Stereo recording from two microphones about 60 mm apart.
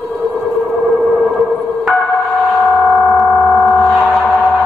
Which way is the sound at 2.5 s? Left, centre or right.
Centre.